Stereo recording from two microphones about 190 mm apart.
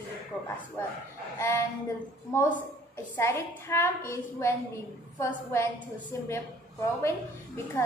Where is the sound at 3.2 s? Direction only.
15° left (ahead or behind).